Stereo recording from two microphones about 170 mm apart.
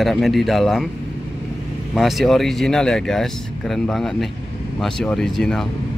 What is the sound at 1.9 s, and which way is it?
Speech, centre (ahead or behind).